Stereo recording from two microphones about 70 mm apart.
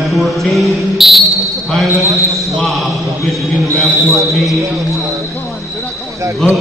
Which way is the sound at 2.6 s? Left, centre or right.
Centre.